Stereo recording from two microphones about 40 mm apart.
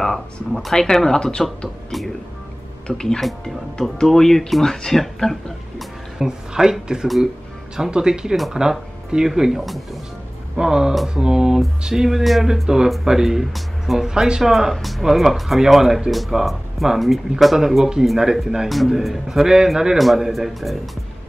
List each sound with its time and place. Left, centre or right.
0.0 s speech: centre
2.9 s speech: left
4.0 s speech: centre
6.1 s speech: centre
10.5 s speech: centre
12.6 s speech: centre
13.4 s speech: centre
14.0 s speech: centre
14.4 s speech: centre